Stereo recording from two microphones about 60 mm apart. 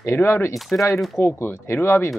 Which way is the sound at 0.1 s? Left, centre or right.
Left.